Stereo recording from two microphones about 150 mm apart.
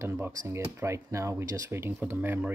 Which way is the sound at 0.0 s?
20° right (ahead or behind).